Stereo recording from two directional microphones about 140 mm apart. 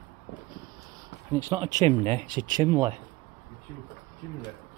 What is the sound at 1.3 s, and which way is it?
Speech, 20° right (ahead or behind).